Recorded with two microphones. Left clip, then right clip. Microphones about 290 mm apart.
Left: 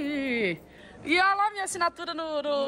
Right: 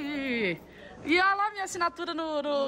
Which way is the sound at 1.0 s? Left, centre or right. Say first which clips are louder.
Left 2 dB; centre.